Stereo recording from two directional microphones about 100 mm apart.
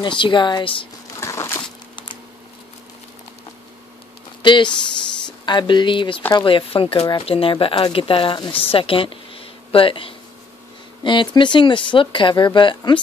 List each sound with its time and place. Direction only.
0.0 s speech: 55° left (ahead or behind)
1.2 s crumpling: 30° left (ahead or behind)
4.4 s speech: 55° left (ahead or behind)
11.1 s speech: 50° left (ahead or behind)